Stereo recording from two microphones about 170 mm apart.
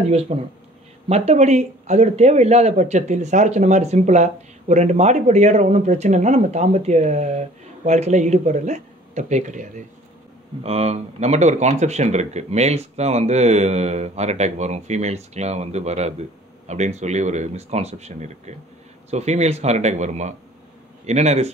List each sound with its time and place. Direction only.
0.3 s speech: 40° right (ahead or behind)